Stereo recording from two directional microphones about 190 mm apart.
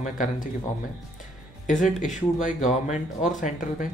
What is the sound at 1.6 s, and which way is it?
Speech, 40° left (ahead or behind).